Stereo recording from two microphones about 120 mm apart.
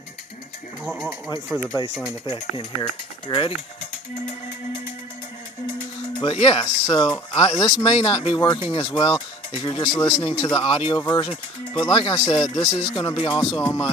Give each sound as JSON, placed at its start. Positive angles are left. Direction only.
{"t": 0.8, "sound": "speech", "side_deg": -5}
{"t": 2.5, "sound": "speech", "side_deg": 45}
{"t": 6.3, "sound": "speech", "side_deg": 50}
{"t": 6.6, "sound": "speech", "side_deg": 35}
{"t": 13.6, "sound": "speech", "side_deg": 30}